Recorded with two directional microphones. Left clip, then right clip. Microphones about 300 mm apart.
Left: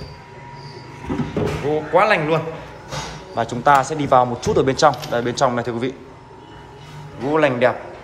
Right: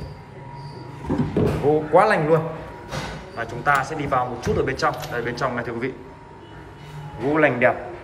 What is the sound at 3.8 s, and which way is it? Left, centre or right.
Speech, centre.